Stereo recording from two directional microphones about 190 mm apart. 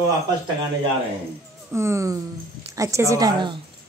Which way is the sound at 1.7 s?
15° right (ahead or behind).